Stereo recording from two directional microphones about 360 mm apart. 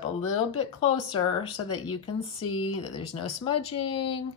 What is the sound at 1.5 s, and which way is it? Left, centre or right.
Speech, left.